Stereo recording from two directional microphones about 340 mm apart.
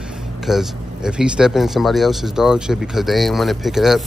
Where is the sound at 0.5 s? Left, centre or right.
Centre.